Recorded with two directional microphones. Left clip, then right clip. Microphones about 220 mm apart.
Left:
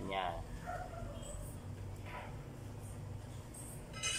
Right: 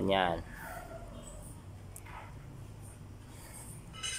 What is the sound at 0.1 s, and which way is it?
Speech, 50° right (ahead or behind).